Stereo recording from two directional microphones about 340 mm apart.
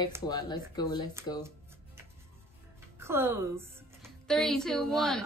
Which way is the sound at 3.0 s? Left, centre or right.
Centre.